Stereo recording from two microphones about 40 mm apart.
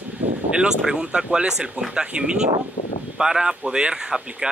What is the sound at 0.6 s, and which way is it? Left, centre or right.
Speech, right.